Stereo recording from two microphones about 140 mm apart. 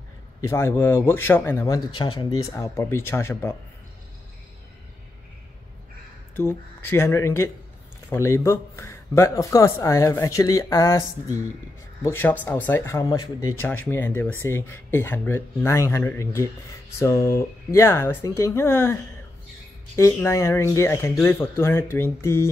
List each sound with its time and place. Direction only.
0.4 s speech: 20° left (ahead or behind)
1.8 s speech: 35° left (ahead or behind); by 3.5 s 20° left (ahead or behind)
6.3 s speech: 15° left (ahead or behind)
20.0 s speech: 20° left (ahead or behind)